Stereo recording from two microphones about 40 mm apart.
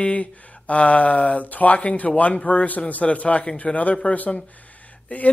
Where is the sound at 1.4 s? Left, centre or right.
Left.